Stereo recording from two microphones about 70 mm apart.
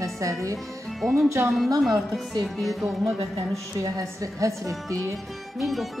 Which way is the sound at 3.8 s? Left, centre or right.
Right.